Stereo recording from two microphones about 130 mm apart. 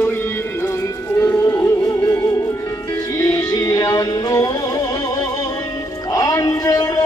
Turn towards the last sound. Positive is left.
turn(degrees=30)  # may be behind; listen again after turning